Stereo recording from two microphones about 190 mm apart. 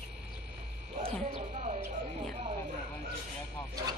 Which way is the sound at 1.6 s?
35° right (ahead or behind).